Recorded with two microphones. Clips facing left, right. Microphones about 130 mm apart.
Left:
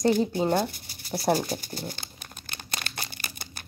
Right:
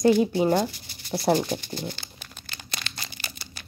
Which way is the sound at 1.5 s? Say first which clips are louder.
Right 3 dB; 45° left (ahead or behind).